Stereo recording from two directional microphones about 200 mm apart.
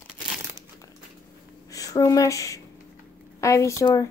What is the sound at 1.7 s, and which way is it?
A woman's voice, 15° left (ahead or behind).